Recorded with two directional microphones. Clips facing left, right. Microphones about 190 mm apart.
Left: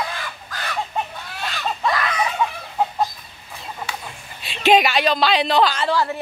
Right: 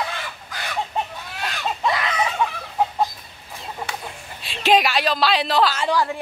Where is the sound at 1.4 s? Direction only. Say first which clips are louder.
Even; 15° right (ahead or behind).